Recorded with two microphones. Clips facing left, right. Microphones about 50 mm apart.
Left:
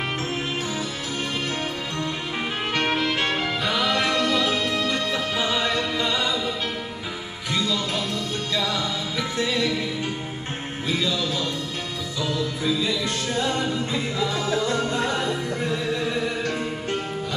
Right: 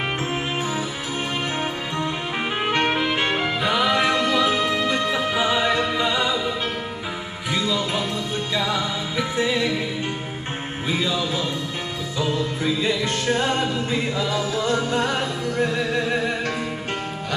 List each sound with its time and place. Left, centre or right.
2.6 s music: centre
7.5 s music: centre
10.9 s music: centre
12.2 s music: right